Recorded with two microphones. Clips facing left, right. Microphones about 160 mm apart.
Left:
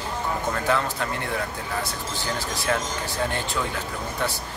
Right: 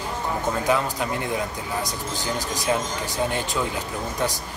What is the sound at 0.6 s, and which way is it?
Speech, 15° right (ahead or behind).